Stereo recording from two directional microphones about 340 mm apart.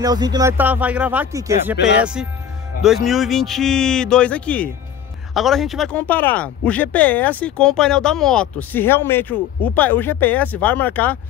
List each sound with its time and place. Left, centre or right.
0.0 s speech: centre